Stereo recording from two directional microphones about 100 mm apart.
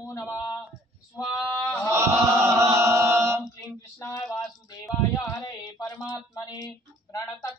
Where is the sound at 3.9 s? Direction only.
30° left (ahead or behind).